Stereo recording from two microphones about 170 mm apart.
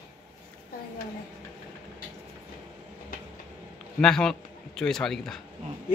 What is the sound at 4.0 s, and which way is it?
A man's voice, 5° left (ahead or behind).